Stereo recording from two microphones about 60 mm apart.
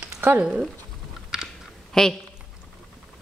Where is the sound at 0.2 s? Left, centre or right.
Right.